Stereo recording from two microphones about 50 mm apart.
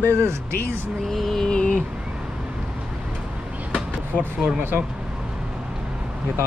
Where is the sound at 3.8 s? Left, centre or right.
Centre.